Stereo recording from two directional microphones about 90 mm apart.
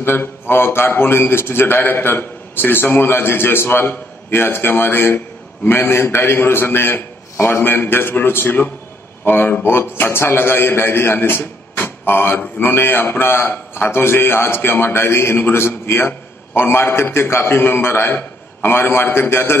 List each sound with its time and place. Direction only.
0.0 s a man's voice: 25° left (ahead or behind)